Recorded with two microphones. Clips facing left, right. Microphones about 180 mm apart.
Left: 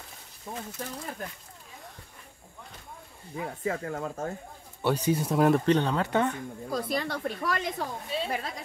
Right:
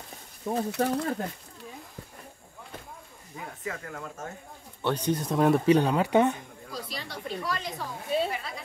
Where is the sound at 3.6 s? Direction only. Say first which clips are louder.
Left 6 dB; 30° left (ahead or behind).